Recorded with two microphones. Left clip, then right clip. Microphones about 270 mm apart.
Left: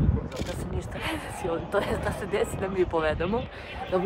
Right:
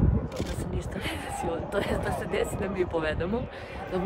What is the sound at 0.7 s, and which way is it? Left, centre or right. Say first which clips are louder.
Speech: left 2 dB; centre.